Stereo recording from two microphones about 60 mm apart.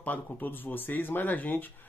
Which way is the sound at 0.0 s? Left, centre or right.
Left.